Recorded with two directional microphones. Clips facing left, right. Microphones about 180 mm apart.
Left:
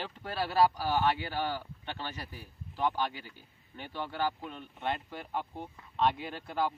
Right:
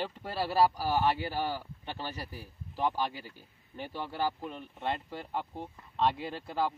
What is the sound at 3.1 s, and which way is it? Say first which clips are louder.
Speech: right 2 dB; 40° right (ahead or behind).